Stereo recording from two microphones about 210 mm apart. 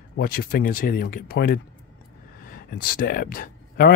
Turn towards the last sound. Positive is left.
turn(degrees=45)  # may be behind; listen again after turning